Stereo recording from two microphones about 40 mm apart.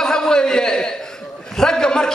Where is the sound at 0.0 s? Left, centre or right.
Centre.